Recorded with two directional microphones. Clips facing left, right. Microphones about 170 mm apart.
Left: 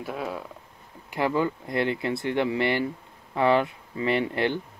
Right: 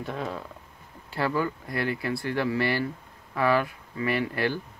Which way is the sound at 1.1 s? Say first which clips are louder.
Left 2 dB; 20° left (ahead or behind).